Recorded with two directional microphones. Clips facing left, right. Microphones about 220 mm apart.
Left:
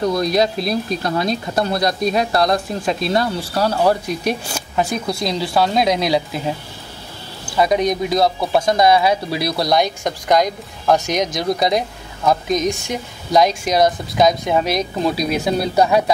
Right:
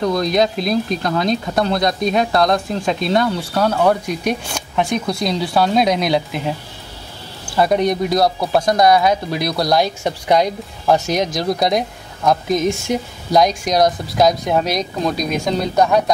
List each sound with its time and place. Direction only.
0.0 s speech: 5° left (ahead or behind)
7.7 s speech: 20° left (ahead or behind)
8.1 s speech: centre (ahead or behind)